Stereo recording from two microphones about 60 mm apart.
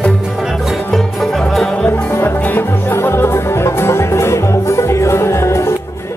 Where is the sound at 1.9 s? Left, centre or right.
Left.